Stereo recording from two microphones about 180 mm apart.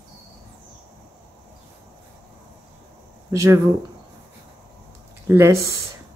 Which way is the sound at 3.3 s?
15° right (ahead or behind).